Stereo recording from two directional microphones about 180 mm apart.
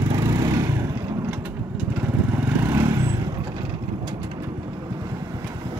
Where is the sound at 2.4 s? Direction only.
15° right (ahead or behind).